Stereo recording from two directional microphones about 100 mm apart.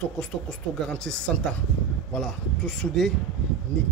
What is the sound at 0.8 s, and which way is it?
Speech, 5° left (ahead or behind).